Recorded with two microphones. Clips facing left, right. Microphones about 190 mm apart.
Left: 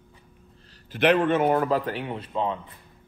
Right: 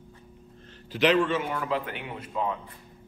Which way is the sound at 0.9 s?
55° left (ahead or behind).